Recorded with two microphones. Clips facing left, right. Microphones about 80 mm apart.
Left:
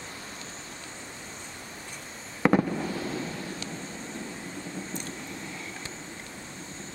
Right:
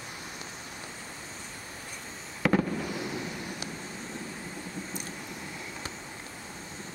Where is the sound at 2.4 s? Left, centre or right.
Left.